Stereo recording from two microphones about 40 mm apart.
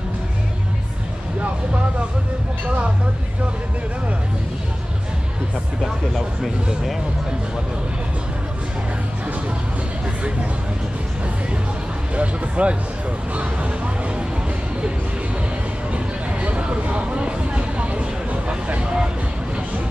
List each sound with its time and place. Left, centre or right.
1.4 s vehicle: right
6.1 s speech: centre
12.2 s speech: right
16.3 s a sound: right